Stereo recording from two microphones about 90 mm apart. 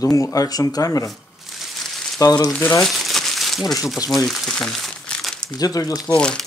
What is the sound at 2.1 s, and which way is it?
Speech, 45° left (ahead or behind).